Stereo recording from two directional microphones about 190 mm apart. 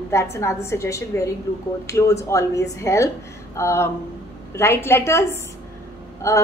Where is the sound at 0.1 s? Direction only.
15° left (ahead or behind).